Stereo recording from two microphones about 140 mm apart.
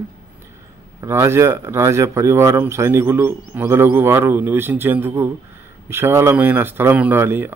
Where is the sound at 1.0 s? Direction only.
20° right (ahead or behind).